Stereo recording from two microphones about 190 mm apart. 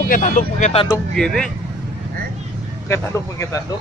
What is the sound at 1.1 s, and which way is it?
Speech, 5° left (ahead or behind).